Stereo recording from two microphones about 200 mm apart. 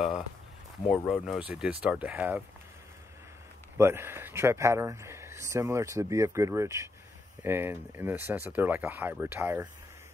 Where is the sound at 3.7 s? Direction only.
10° right (ahead or behind).